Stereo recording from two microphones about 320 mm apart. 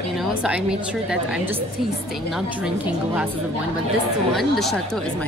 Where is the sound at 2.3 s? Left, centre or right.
Centre.